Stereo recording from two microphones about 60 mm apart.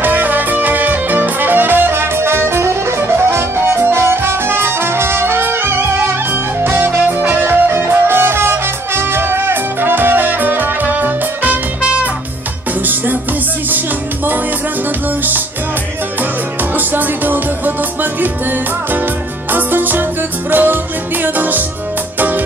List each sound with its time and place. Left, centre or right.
0.0 s music: right
16.7 s music: right